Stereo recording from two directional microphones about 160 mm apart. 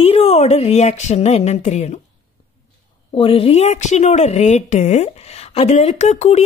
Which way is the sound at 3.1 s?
35° left (ahead or behind).